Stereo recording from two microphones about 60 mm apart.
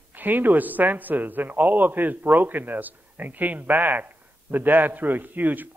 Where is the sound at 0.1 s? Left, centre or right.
Right.